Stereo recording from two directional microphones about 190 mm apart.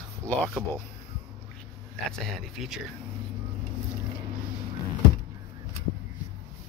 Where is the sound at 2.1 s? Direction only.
5° left (ahead or behind).